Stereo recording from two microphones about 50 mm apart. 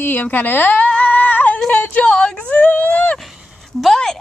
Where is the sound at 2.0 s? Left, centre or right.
Left.